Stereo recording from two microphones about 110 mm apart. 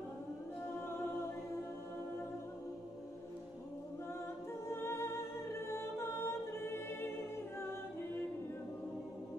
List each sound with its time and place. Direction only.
4.6 s music: 25° left (ahead or behind)